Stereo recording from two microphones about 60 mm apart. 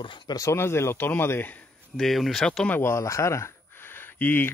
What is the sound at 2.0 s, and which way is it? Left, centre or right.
Speech, centre.